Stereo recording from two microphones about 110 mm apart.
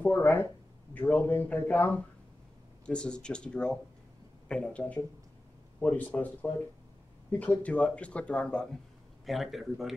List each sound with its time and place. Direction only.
0.0 s a man's voice: 15° left (ahead or behind); by 9.9 s centre (ahead or behind)